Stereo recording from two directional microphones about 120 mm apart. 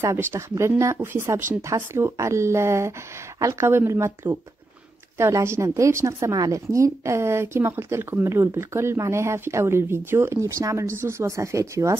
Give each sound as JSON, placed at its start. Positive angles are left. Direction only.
{"t": 0.0, "sound": "speech", "side_deg": -20}